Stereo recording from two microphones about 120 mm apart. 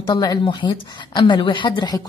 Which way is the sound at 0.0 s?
35° left (ahead or behind).